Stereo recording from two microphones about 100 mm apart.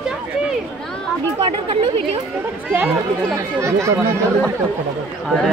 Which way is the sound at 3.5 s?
30° right (ahead or behind).